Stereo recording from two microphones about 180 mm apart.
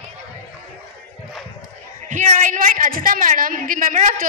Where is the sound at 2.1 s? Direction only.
45° right (ahead or behind).